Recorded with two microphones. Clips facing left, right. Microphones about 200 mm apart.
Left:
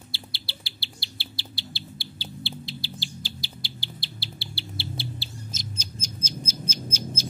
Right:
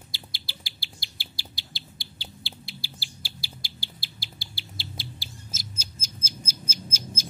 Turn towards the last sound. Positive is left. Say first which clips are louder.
# left 5 dB
turn(degrees=-10)  # may be behind; listen again after turning